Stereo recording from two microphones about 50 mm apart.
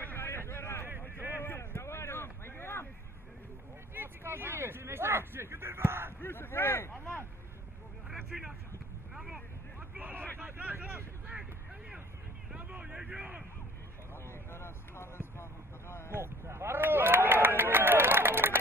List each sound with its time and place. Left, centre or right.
0.0 s vehicle: left
1.6 s a sound: left
3.9 s a sound: right
6.2 s speech: left
8.3 s speech: centre
9.1 s boat: centre
9.8 s vehicle: right
12.5 s vehicle: right
13.0 s speech: right
14.3 s vehicle: left
16.1 s a sound: right